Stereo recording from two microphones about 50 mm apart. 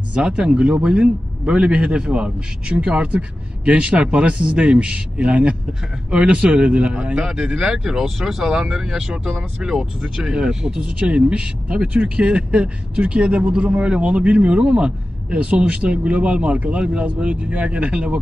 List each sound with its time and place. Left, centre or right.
0.1 s speech: right
7.2 s speech: centre